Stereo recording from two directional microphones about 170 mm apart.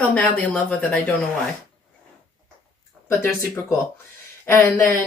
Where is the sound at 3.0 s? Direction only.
10° left (ahead or behind).